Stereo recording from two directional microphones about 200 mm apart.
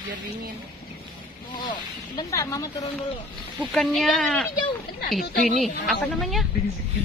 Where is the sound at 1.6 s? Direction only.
20° left (ahead or behind).